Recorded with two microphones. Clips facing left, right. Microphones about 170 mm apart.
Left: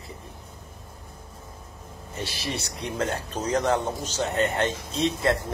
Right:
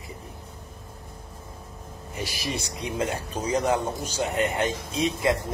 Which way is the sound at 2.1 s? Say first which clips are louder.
Right 1 dB; 10° right (ahead or behind).